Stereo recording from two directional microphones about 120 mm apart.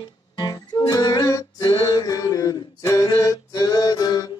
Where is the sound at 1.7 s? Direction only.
35° left (ahead or behind).